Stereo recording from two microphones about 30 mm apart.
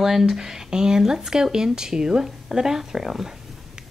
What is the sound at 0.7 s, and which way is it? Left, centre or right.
A woman's voice, right.